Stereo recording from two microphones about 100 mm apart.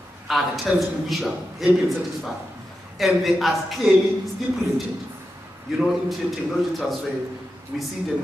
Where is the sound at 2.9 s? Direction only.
Centre (ahead or behind).